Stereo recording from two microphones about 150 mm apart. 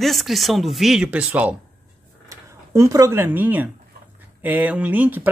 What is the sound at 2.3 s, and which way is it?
Speech, 20° right (ahead or behind).